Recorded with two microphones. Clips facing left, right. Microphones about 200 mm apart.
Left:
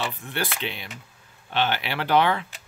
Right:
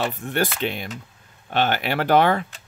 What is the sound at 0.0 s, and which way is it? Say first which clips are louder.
Speech: right 6 dB; 45° right (ahead or behind).